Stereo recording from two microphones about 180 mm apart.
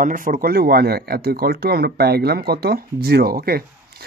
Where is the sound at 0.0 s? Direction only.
50° right (ahead or behind).